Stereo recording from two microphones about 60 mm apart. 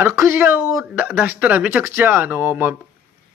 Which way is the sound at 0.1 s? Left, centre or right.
Right.